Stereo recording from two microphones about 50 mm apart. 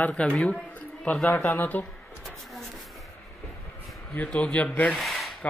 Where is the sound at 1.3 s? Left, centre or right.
Left.